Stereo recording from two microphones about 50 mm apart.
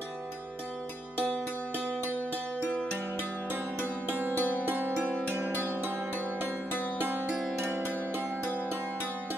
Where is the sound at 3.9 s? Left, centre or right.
Right.